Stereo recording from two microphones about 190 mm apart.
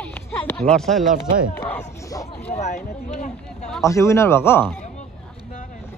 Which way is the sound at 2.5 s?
40° left (ahead or behind).